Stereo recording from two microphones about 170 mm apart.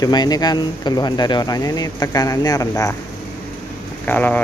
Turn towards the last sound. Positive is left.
turn(degrees=10)  # may be behind; listen again after turning